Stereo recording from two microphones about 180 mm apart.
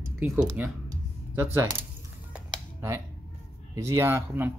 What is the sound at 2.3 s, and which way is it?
Computer keyboard, 15° right (ahead or behind).